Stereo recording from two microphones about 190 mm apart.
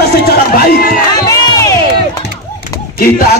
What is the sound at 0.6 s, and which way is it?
Speech, 50° left (ahead or behind).